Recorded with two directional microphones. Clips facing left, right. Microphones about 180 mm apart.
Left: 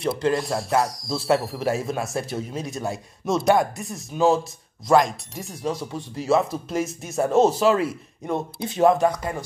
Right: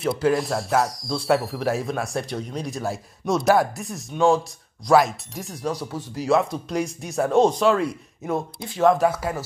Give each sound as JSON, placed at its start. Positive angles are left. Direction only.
{"t": 0.0, "sound": "speech", "side_deg": 0}
{"t": 8.5, "sound": "speech", "side_deg": 20}
{"t": 8.9, "sound": "speech", "side_deg": -5}